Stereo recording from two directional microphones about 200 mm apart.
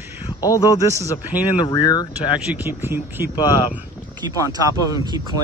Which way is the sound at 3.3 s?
20° left (ahead or behind).